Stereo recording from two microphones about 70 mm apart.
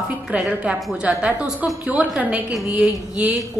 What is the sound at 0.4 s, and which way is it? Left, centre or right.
A woman's voice, centre.